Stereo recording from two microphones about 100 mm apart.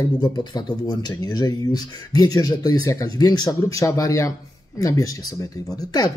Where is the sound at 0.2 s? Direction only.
45° left (ahead or behind).